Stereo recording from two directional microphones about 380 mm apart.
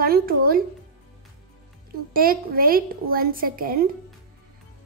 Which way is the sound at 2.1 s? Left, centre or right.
Right.